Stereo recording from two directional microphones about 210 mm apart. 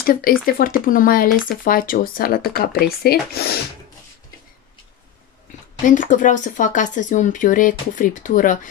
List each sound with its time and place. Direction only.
0.0 s speech: 45° left (ahead or behind)
5.9 s speech: 35° left (ahead or behind)